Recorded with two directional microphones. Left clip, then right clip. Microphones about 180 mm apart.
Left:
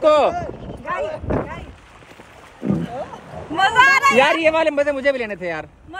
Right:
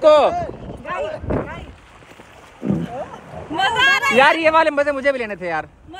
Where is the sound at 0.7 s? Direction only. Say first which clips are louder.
Left 2 dB; 20° right (ahead or behind).